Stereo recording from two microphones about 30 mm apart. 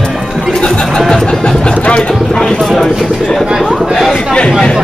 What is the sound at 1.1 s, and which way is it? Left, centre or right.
Vehicle, left.